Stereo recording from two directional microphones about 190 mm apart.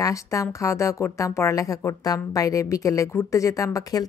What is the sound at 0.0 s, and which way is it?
A woman's voice, 15° left (ahead or behind).